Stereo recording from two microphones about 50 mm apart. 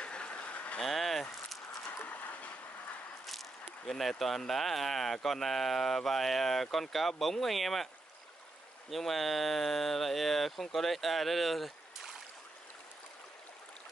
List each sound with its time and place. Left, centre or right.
0.0 s vehicle: left
0.8 s speech: centre
2.0 s a sound: left
3.3 s speech: centre
8.9 s speech: centre